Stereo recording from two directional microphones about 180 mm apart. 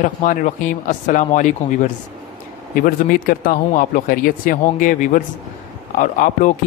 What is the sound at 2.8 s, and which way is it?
Speech, 50° left (ahead or behind).